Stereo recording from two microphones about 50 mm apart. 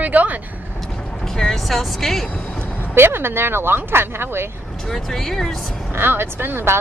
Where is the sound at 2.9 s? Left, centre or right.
Right.